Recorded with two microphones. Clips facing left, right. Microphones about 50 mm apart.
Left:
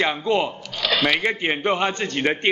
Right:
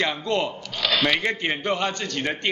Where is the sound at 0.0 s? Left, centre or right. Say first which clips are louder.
Left 3 dB; centre.